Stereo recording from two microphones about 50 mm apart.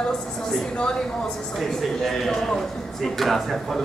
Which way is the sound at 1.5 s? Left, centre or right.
Centre.